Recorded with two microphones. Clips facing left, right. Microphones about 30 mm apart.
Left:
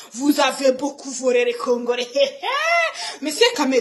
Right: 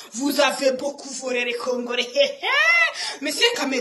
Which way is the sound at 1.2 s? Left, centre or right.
Centre.